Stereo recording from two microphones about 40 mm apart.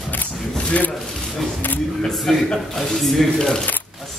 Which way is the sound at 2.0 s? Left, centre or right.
Centre.